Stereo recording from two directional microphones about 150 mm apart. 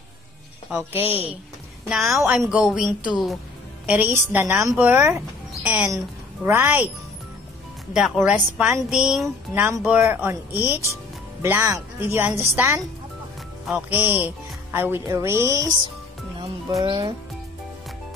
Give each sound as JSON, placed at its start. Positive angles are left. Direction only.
{"t": 0.7, "sound": "speech", "side_deg": -10}
{"t": 1.9, "sound": "a woman's voice", "side_deg": 0}
{"t": 7.9, "sound": "a woman's voice", "side_deg": -5}
{"t": 9.5, "sound": "speech", "side_deg": -15}
{"t": 16.8, "sound": "a child's voice", "side_deg": -30}